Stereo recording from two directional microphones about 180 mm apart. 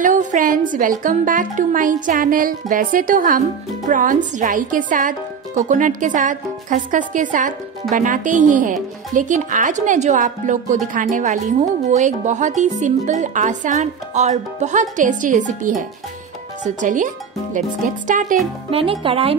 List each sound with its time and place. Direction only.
0.0 s speech: 45° right (ahead or behind)
18.7 s speech: 30° right (ahead or behind)